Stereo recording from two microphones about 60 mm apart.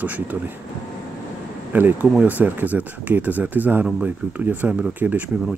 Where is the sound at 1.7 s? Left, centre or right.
Right.